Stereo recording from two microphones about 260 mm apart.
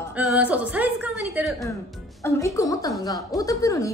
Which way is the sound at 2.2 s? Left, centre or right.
Centre.